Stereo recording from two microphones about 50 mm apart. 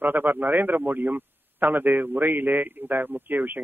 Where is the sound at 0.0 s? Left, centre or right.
Right.